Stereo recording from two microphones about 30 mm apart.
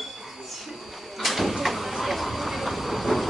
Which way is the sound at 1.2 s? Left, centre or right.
Centre.